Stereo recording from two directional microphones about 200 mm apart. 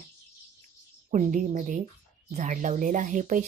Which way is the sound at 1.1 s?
40° right (ahead or behind).